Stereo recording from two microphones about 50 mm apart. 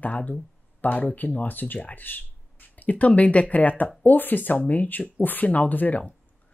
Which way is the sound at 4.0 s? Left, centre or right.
Left.